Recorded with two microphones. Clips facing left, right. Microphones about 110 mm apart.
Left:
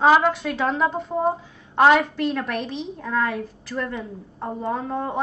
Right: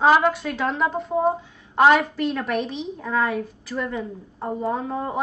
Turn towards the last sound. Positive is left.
turn(degrees=0)  # may be behind; listen again after turning